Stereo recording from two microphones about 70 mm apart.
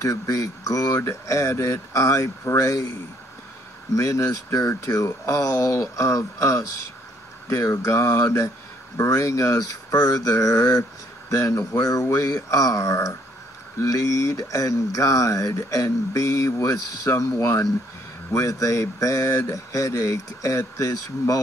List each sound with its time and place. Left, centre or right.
0.0 s speech: left
3.9 s speech: left